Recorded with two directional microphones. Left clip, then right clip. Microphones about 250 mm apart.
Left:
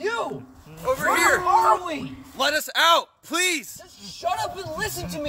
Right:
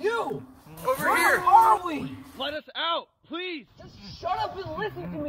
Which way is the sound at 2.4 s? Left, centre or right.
Centre.